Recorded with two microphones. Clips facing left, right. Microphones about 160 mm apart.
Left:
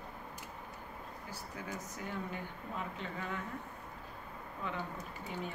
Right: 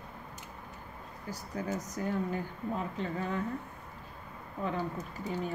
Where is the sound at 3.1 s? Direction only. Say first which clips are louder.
Right 7 dB; 35° right (ahead or behind).